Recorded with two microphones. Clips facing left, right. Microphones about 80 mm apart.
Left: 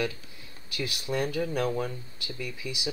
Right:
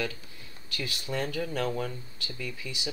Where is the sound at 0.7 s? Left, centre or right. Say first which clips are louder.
Left 3 dB; centre.